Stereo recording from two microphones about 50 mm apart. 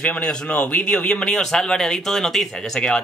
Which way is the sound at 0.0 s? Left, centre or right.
Centre.